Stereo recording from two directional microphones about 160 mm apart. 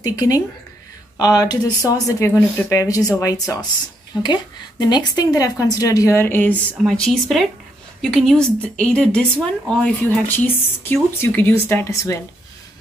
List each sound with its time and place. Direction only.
0.0 s a woman's voice: 25° left (ahead or behind)